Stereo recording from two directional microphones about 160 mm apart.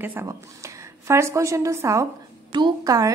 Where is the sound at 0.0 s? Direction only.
15° right (ahead or behind).